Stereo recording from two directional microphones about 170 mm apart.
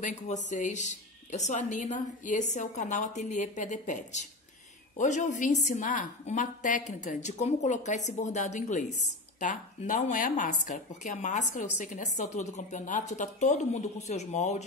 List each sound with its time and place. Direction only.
0.5 s speech: 45° left (ahead or behind)